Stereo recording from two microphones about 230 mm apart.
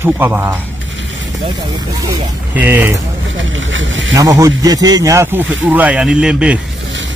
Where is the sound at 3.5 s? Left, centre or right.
Right.